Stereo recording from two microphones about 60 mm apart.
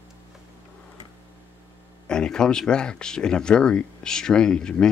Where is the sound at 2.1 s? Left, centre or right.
Centre.